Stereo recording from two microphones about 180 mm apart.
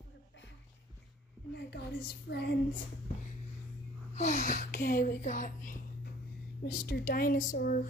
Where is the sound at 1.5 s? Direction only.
65° left (ahead or behind).